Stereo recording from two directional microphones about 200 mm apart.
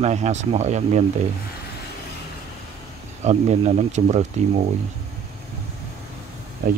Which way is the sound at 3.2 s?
35° right (ahead or behind).